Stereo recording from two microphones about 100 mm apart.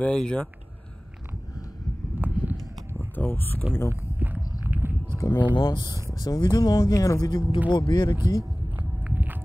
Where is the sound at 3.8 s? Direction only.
30° left (ahead or behind).